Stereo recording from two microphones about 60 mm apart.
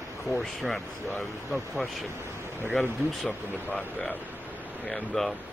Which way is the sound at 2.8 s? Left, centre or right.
Left.